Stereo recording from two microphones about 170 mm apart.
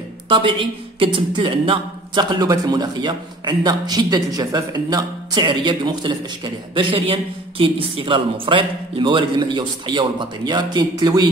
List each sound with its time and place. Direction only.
0.3 s speech: 30° right (ahead or behind)